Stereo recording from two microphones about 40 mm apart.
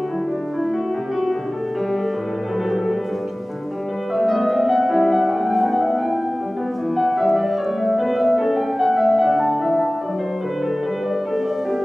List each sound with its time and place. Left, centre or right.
4.2 s music: centre